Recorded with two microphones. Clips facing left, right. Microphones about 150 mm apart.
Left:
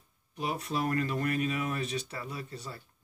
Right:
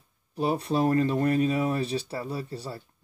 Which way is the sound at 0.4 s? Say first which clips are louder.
Right 7 dB; 30° right (ahead or behind).